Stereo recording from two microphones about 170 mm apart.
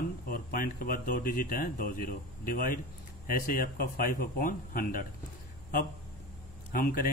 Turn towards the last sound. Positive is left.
turn(degrees=60)  # may be behind; listen again after turning